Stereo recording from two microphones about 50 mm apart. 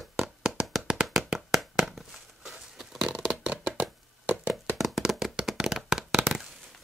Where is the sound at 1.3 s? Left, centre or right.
Centre.